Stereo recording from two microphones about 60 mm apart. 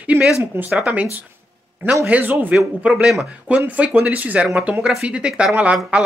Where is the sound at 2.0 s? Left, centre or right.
Right.